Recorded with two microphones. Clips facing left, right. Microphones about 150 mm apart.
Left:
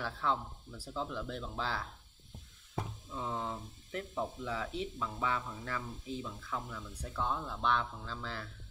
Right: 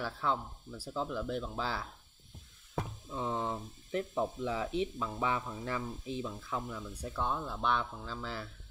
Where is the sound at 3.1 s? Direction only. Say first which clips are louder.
Right 4 dB; 20° right (ahead or behind).